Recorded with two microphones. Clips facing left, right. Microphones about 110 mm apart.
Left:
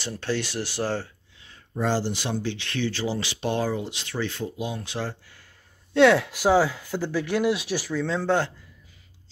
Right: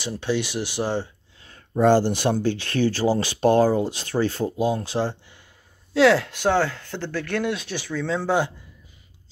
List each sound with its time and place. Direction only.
0.0 s speech: 15° right (ahead or behind)
1.4 s speech: 50° right (ahead or behind); by 5.4 s 30° right (ahead or behind)
5.9 s speech: centre (ahead or behind)